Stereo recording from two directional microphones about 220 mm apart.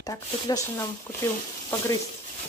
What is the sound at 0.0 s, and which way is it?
Speech, 15° left (ahead or behind).